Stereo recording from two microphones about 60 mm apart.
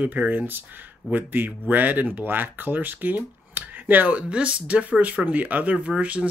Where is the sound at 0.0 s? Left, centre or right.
Right.